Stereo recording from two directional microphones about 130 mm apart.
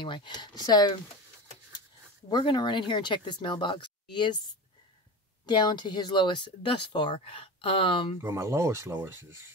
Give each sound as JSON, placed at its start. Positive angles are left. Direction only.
{"t": 0.0, "sound": "speech", "side_deg": 40}
{"t": 2.2, "sound": "speech", "side_deg": 35}
{"t": 5.5, "sound": "speech", "side_deg": 35}
{"t": 8.2, "sound": "speech", "side_deg": -20}